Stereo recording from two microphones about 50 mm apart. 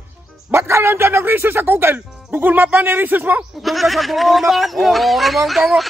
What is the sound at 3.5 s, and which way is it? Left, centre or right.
Speech, centre.